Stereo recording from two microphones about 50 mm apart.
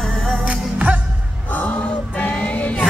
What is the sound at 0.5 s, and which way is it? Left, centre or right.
Music, right.